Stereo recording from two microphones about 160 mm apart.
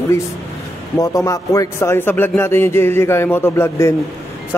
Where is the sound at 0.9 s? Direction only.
20° left (ahead or behind).